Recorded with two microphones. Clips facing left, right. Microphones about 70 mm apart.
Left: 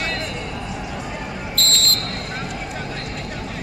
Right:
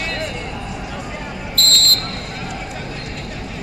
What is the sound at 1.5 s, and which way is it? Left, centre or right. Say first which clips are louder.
Basketball bounce: right 3 dB; centre.